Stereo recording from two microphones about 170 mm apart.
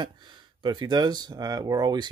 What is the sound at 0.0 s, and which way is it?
Speech, 30° right (ahead or behind).